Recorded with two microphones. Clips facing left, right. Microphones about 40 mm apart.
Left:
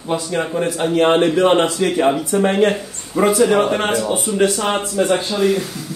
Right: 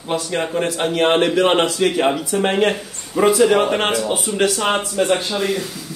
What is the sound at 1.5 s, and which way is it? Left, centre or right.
Speech, right.